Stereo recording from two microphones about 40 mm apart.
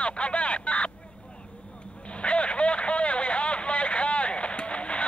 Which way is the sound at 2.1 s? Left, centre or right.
Left.